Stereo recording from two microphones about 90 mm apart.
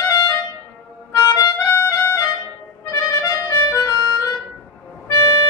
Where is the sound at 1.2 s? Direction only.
40° left (ahead or behind).